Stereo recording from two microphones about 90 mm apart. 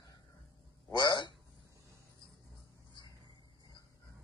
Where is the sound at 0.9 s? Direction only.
60° left (ahead or behind).